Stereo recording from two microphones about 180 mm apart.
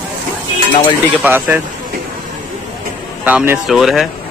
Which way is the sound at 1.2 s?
10° right (ahead or behind).